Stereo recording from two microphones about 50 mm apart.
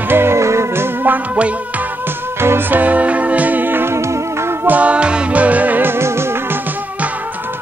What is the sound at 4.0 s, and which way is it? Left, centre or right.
Music, right.